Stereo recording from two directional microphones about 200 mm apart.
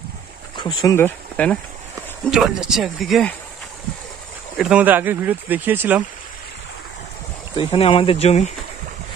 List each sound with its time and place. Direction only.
0.6 s speech: 20° left (ahead or behind); by 3.3 s centre (ahead or behind)
4.6 s speech: 5° right (ahead or behind)
7.5 s speech: 25° left (ahead or behind)